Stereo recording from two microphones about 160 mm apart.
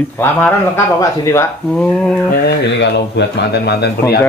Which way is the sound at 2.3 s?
90° left.